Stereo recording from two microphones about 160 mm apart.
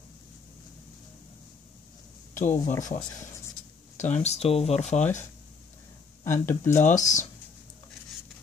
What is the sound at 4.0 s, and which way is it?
Speech, 45° left (ahead or behind).